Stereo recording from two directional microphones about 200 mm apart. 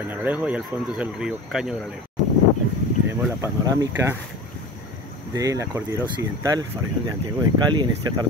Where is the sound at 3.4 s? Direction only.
15° right (ahead or behind).